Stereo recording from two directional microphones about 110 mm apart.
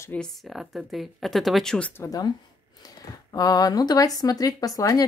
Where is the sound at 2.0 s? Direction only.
35° left (ahead or behind).